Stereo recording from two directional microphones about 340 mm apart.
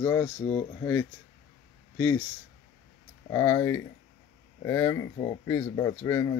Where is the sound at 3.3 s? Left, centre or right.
Centre.